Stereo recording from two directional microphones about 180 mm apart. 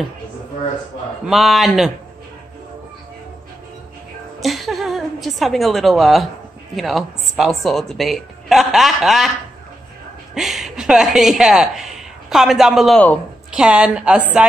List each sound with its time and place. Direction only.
1.2 s speech: centre (ahead or behind)
4.4 s a woman's voice: centre (ahead or behind)
10.3 s a woman's voice: centre (ahead or behind)
13.5 s a woman's voice: 5° right (ahead or behind)